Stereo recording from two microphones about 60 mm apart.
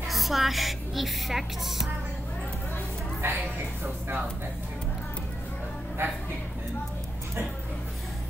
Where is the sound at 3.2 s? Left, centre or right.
Right.